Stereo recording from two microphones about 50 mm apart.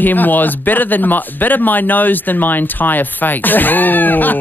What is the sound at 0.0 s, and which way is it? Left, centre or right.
Speech, left.